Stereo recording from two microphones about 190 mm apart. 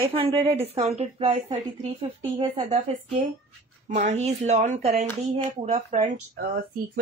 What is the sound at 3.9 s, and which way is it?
Speech, 40° right (ahead or behind).